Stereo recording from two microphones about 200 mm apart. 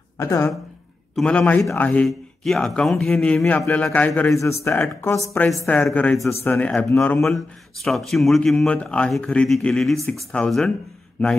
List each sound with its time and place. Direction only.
0.2 s a man's voice: 15° left (ahead or behind)
7.3 s speech: centre (ahead or behind)